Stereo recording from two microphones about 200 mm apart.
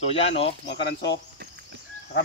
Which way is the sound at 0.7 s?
60° left (ahead or behind).